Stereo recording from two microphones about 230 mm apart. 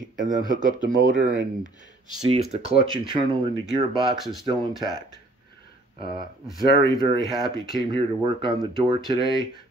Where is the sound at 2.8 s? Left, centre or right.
Right.